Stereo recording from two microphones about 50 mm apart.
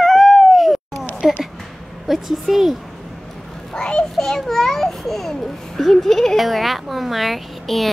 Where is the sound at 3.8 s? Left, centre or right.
Centre.